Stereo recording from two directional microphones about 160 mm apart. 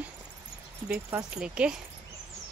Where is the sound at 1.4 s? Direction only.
5° right (ahead or behind).